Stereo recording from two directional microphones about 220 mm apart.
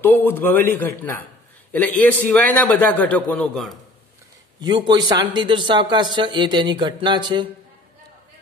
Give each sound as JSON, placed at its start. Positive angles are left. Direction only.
{"t": 0.0, "sound": "a man's voice", "side_deg": 10}
{"t": 4.6, "sound": "a man's voice", "side_deg": -20}